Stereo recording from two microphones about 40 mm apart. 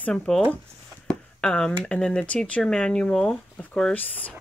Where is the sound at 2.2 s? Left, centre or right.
Left.